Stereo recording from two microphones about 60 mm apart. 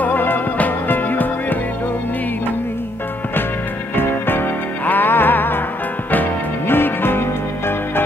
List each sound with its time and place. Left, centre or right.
0.0 s music: left
3.9 s music: left
6.7 s music: left